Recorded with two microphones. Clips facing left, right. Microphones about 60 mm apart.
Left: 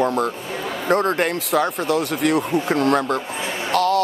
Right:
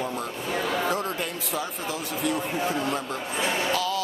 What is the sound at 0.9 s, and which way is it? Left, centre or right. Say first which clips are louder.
Speech: left 10 dB; left.